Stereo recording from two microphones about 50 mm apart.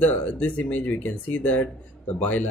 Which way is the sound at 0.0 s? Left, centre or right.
Left.